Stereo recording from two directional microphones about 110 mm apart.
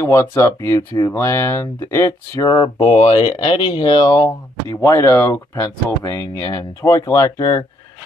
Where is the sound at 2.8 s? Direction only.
70° left (ahead or behind).